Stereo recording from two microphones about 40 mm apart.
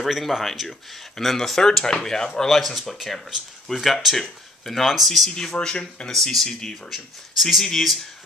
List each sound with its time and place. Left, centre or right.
0.0 s speech: centre
2.6 s speech: centre
5.3 s speech: centre